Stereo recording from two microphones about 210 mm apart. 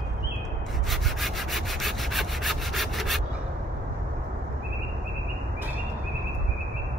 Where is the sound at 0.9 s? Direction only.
Centre (ahead or behind).